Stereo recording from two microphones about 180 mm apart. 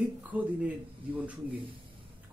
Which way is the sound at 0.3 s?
10° right (ahead or behind).